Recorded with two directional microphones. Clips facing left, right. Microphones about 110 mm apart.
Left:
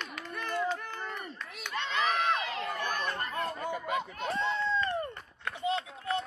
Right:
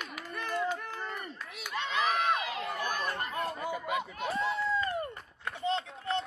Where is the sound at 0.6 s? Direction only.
5° right (ahead or behind).